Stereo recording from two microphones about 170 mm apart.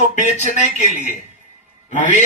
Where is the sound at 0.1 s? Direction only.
40° left (ahead or behind).